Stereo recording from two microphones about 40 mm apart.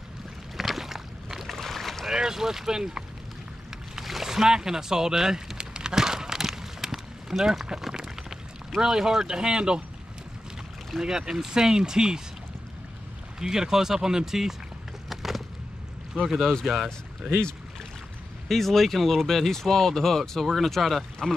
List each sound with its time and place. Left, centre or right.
0.6 s a sound: centre
1.5 s boat: centre
2.0 s speech: centre
4.0 s boat: centre
7.6 s a sound: centre
9.4 s speech: centre
11.0 s speech: centre
13.4 s speech: centre
15.0 s a sound: centre
16.3 s speech: centre
16.6 s speech: centre
18.5 s speech: centre